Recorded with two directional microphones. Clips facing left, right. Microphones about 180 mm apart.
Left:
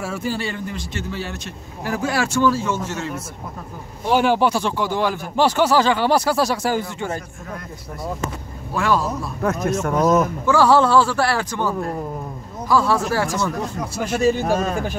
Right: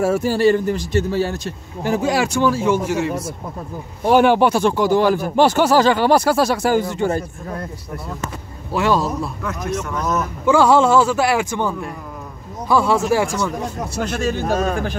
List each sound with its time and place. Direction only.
0.0 s speech: 45° right (ahead or behind)
1.8 s speech: 20° right (ahead or behind)
4.0 s speech: 55° right (ahead or behind)
6.9 s a man's voice: 35° right (ahead or behind)
8.7 s speech: 20° right (ahead or behind)
9.4 s speech: 45° left (ahead or behind)
10.4 s speech: 15° right (ahead or behind)
12.6 s speech: 20° right (ahead or behind)
14.0 s speech: 10° left (ahead or behind)